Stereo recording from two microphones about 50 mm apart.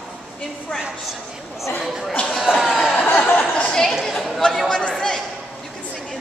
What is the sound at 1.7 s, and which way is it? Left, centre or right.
Speech, centre.